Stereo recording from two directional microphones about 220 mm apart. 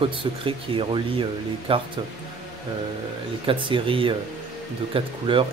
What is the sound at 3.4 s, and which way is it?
Speech, 25° right (ahead or behind).